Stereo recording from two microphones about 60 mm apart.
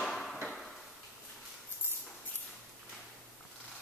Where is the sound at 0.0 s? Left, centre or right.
Centre.